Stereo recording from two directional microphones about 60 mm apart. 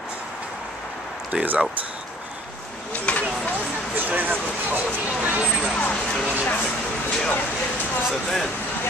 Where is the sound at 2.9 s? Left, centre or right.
Left.